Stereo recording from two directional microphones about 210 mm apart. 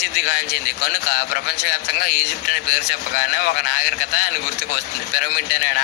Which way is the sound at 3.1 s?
45° left (ahead or behind).